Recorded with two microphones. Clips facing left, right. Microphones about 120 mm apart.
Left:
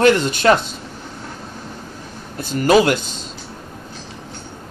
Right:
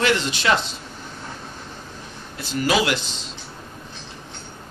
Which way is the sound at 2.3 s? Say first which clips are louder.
Left 7 dB; 45° left (ahead or behind).